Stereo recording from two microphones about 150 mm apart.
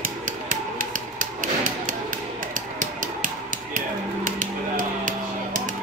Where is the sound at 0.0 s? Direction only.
65° right (ahead or behind).